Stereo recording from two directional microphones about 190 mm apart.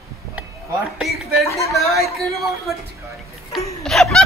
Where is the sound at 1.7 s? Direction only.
Centre (ahead or behind).